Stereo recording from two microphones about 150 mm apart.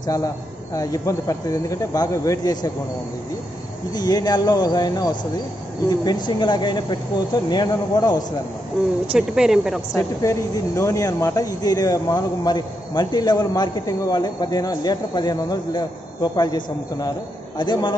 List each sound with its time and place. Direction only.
0.0 s speech: 25° left (ahead or behind)
3.9 s speech: 25° left (ahead or behind)
9.0 s speech: 5° right (ahead or behind)
9.9 s a man's voice: 20° left (ahead or behind)